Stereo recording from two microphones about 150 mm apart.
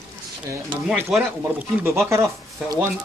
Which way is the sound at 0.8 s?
5° right (ahead or behind).